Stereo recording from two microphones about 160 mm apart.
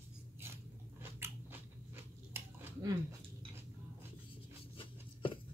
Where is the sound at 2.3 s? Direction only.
15° right (ahead or behind).